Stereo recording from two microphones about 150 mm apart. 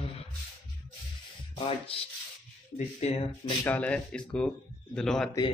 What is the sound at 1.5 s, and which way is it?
Speech, 35° left (ahead or behind).